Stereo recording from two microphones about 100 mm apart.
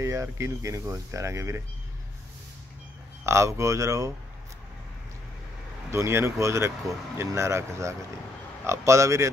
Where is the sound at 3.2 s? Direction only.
30° right (ahead or behind).